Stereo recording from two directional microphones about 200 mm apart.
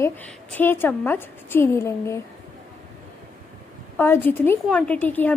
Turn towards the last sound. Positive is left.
turn(degrees=10)  # may be behind; listen again after turning